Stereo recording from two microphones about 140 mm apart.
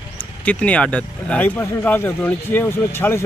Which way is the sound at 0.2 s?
10° left (ahead or behind).